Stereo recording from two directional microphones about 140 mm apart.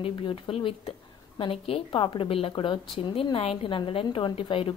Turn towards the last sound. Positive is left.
turn(degrees=40)  # may be behind; listen again after turning